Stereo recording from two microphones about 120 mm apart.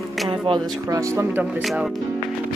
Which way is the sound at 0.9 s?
20° right (ahead or behind).